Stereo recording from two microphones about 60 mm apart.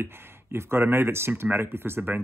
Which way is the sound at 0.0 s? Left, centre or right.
Right.